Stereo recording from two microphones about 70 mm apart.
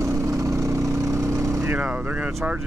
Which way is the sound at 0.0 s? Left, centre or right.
Right.